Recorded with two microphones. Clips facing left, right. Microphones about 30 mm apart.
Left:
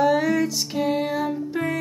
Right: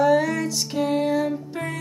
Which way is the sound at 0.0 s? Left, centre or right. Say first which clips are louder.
Even; centre.